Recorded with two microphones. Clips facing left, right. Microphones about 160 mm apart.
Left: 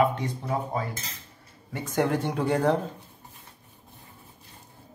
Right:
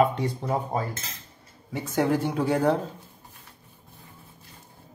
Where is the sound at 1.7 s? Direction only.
5° right (ahead or behind).